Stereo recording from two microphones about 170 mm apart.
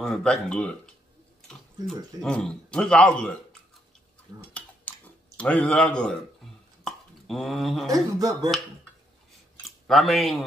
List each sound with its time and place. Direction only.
0.0 s a man's voice: 5° left (ahead or behind)
2.2 s a man's voice: 5° left (ahead or behind)
5.4 s a man's voice: 10° left (ahead or behind)
6.8 s plop: centre (ahead or behind)
7.9 s speech: 20° right (ahead or behind)
9.8 s a man's voice: centre (ahead or behind)